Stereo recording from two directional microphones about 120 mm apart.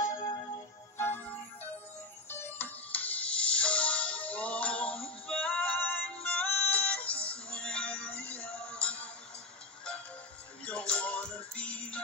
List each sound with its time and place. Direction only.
0.0 s music: 30° left (ahead or behind)
0.9 s music: 20° left (ahead or behind)
2.2 s music: 20° left (ahead or behind)
10.6 s music: 10° left (ahead or behind)